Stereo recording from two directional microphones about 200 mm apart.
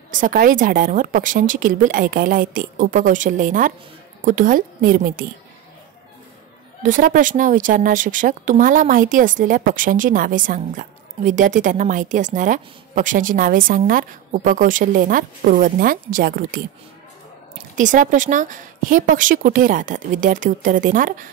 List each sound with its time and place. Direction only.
0.1 s a woman's voice: 45° right (ahead or behind)
6.8 s speech: 40° right (ahead or behind)
17.7 s speech: 40° right (ahead or behind)